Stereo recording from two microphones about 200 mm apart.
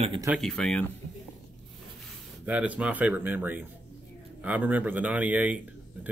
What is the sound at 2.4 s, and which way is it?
Speech, 5° right (ahead or behind).